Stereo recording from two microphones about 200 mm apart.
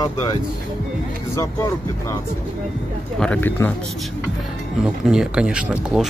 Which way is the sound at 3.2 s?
10° left (ahead or behind).